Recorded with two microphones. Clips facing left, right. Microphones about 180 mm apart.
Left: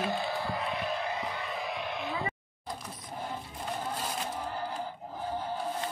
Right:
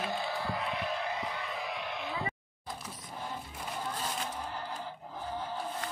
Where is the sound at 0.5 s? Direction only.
40° left (ahead or behind).